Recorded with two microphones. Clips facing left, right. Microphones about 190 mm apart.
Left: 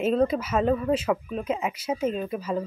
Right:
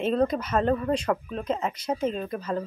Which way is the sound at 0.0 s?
5° left (ahead or behind).